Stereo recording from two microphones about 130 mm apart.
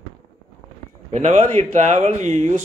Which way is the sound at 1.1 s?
60° right (ahead or behind).